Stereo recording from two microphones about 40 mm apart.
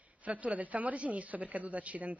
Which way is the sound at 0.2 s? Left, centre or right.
Right.